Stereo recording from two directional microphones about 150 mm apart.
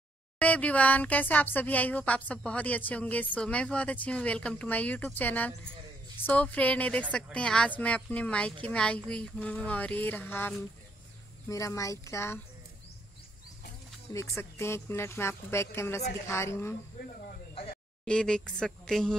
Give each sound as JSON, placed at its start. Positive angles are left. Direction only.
{"t": 0.4, "sound": "speech", "side_deg": 10}
{"t": 14.3, "sound": "speech", "side_deg": 15}
{"t": 18.0, "sound": "speech", "side_deg": 5}